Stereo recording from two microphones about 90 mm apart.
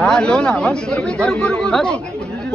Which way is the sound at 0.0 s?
10° left (ahead or behind).